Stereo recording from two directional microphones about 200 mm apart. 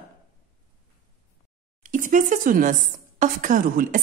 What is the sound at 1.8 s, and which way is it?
A woman's voice, 40° right (ahead or behind).